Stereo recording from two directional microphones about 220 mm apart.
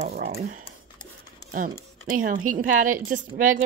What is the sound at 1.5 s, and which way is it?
A woman's voice, 35° right (ahead or behind).